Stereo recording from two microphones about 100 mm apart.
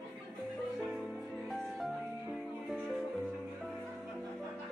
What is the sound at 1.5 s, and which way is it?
Music, centre (ahead or behind).